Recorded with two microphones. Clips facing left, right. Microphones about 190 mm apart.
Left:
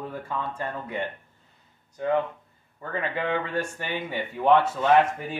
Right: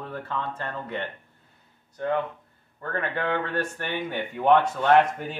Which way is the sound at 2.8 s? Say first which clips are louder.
Even; 10° left (ahead or behind).